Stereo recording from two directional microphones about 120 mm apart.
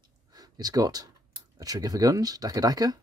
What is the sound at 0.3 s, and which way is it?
Speech, 35° right (ahead or behind).